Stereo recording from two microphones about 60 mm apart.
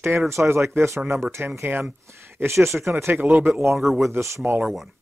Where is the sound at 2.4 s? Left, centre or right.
Right.